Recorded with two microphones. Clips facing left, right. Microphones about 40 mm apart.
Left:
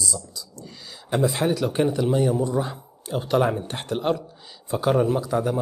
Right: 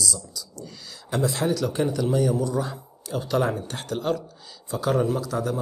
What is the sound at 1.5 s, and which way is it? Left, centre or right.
Speech, left.